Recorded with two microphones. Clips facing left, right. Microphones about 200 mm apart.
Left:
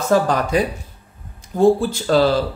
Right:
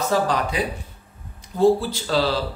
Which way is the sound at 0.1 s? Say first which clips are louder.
Left 7 dB; 50° left (ahead or behind).